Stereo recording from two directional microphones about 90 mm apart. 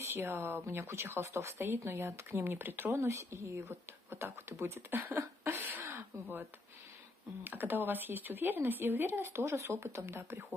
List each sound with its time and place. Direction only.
0.1 s speech: 25° right (ahead or behind)
5.9 s a sound: 35° right (ahead or behind)
7.4 s speech: 20° right (ahead or behind)